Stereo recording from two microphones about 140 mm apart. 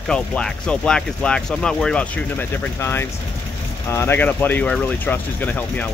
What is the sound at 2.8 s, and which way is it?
Speech, 15° left (ahead or behind).